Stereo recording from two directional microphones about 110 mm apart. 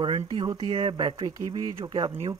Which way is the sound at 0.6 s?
55° right (ahead or behind).